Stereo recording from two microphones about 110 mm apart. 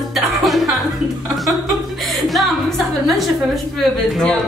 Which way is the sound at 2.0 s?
Centre (ahead or behind).